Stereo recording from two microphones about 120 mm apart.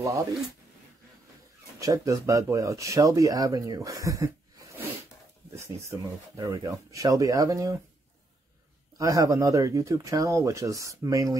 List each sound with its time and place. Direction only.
1.8 s speech: 25° right (ahead or behind)
8.9 s speech: 25° right (ahead or behind)